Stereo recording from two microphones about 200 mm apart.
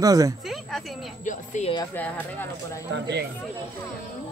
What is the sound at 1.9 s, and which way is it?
Speech, 10° left (ahead or behind).